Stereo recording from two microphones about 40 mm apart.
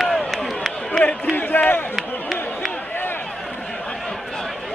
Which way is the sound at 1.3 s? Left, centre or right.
Left.